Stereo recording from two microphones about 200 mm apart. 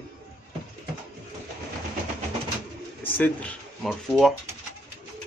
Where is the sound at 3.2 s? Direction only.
5° left (ahead or behind).